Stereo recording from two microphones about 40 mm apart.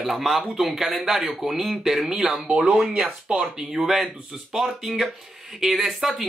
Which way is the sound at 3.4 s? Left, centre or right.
Centre.